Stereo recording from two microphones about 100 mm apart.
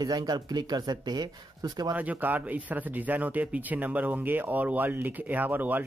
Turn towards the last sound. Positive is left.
turn(degrees=-15)  # may be behind; listen again after turning